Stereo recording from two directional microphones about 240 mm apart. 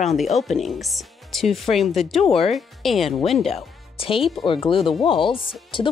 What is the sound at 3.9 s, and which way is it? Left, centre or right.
Speech, left.